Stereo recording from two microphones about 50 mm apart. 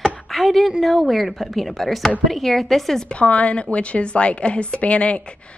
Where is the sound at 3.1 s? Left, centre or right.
Left.